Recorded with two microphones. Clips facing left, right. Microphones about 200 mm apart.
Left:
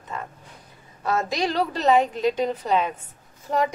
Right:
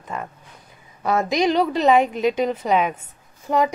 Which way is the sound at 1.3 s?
15° right (ahead or behind).